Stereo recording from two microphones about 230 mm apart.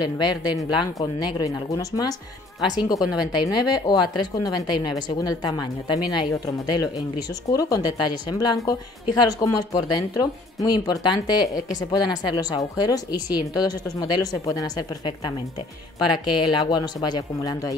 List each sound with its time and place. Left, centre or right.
0.0 s speech: centre
3.3 s speech: centre